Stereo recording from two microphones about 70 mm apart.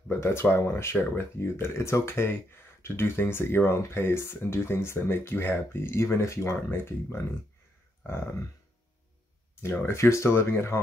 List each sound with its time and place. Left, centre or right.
0.1 s speech: left
9.6 s speech: left